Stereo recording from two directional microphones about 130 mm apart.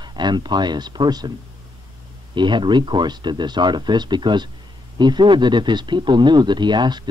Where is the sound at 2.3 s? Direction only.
35° right (ahead or behind).